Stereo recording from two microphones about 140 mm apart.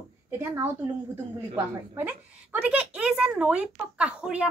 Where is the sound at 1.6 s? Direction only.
15° right (ahead or behind).